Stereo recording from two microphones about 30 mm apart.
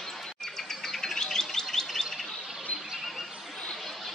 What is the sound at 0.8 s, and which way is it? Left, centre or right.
Bird, centre.